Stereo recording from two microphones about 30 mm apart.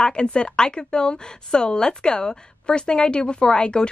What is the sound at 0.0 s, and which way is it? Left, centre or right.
A woman's voice, left.